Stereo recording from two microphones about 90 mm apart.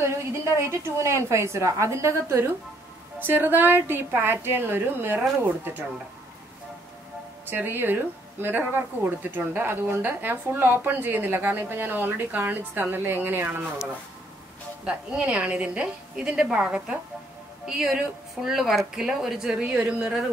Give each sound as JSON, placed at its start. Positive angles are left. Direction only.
{"t": 0.0, "sound": "a woman's voice", "side_deg": -30}
{"t": 7.4, "sound": "speech", "side_deg": -20}
{"t": 14.9, "sound": "speech", "side_deg": -15}